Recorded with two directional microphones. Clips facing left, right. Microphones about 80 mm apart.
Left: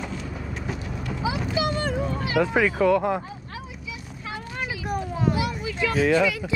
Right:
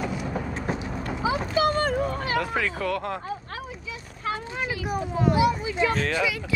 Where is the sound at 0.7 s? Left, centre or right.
Right.